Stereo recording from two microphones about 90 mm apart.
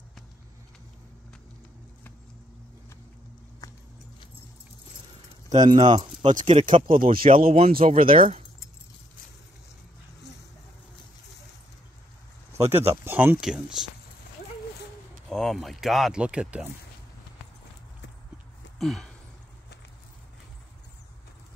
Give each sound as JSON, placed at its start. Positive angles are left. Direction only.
{"t": 3.6, "sound": "keys jangling", "side_deg": 40}
{"t": 5.7, "sound": "speech", "side_deg": -65}
{"t": 12.5, "sound": "speech", "side_deg": -30}
{"t": 13.4, "sound": "speech", "side_deg": -5}
{"t": 15.2, "sound": "speech", "side_deg": 5}
{"t": 18.8, "sound": "a sound", "side_deg": 5}